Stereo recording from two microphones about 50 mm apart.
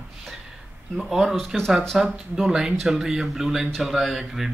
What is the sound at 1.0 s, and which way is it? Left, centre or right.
Speech, centre.